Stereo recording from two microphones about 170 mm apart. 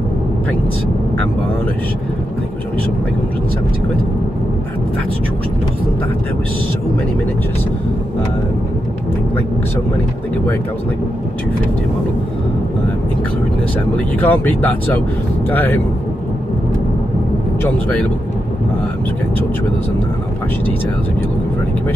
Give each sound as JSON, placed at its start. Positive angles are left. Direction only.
{"t": 13.9, "sound": "speech", "side_deg": 10}